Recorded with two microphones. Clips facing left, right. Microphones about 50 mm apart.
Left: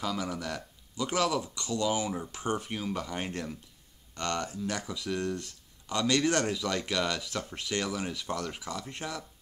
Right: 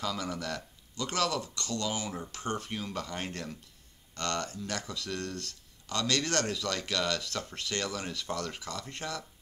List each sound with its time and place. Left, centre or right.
0.0 s speech: centre